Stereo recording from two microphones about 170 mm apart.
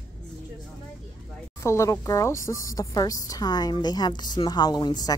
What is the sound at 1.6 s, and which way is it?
A woman's voice, 15° left (ahead or behind).